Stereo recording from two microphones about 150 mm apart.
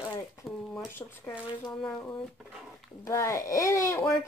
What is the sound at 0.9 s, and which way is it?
Speech, 15° left (ahead or behind).